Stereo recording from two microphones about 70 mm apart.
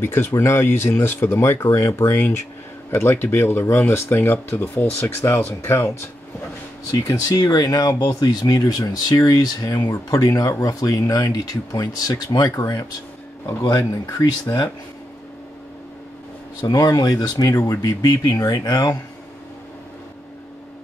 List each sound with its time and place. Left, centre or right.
0.0 s speech: left
2.9 s speech: left
6.9 s speech: left
14.1 s speech: left
16.6 s speech: left
17.2 s speech: left